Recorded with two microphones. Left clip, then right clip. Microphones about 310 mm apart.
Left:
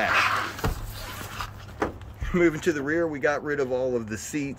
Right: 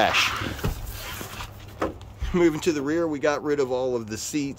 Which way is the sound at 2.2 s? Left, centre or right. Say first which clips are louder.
Right 1 dB; centre.